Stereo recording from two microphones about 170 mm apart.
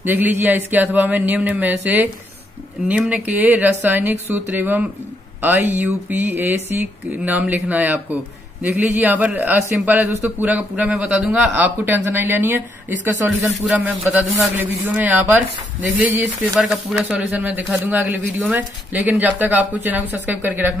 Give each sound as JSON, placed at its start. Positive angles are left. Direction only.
{"t": 0.0, "sound": "speech", "side_deg": -10}
{"t": 3.3, "sound": "speech", "side_deg": -10}